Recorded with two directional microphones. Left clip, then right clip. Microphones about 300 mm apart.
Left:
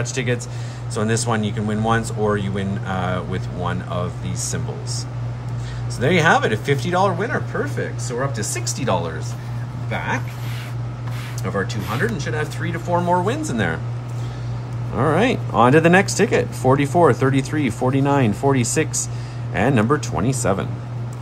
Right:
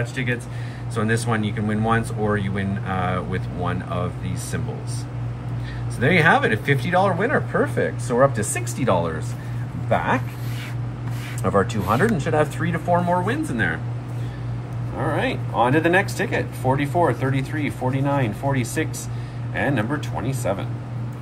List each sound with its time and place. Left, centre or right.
0.1 s speech: centre
5.9 s speech: centre
12.1 s speech: centre
15.1 s speech: left
19.7 s speech: left